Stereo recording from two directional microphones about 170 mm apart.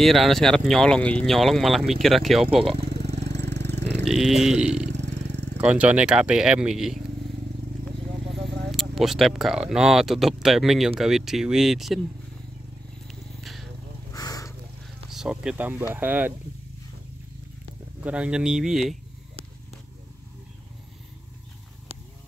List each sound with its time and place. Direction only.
0.0 s speech: centre (ahead or behind)
3.3 s vehicle: 85° right
4.0 s speech: centre (ahead or behind)
4.7 s vehicle: 40° right (ahead or behind)
5.0 s vehicle: 90° right
5.6 s speech: 10° right (ahead or behind)
8.7 s speech: centre (ahead or behind)
13.1 s a sound: centre (ahead or behind)
14.1 s a sound: 20° left (ahead or behind)
15.0 s speech: 5° right (ahead or behind)
18.0 s speech: 5° right (ahead or behind)